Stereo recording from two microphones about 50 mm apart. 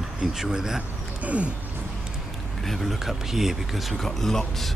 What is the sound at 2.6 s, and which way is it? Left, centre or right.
Speech, centre.